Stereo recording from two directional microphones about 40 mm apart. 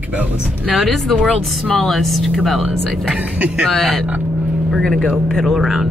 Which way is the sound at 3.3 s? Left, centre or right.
Right.